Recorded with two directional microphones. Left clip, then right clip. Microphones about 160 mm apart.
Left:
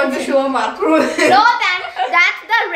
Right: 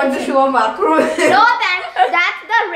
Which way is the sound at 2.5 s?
5° left (ahead or behind).